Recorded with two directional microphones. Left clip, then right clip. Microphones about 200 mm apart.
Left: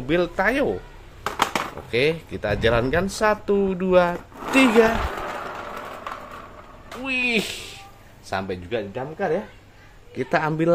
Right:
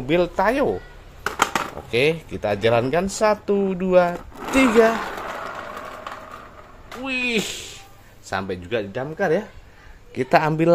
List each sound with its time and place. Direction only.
0.0 s speech: 10° right (ahead or behind)
7.0 s speech: 10° right (ahead or behind)
10.1 s speech: 15° right (ahead or behind)